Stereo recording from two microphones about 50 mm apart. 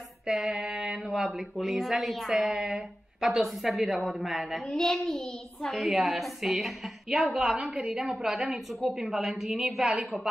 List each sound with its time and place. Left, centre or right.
0.3 s a child's voice: centre
4.6 s a child's voice: centre